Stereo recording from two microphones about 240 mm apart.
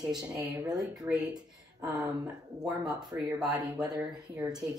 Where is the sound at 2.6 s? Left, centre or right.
Centre.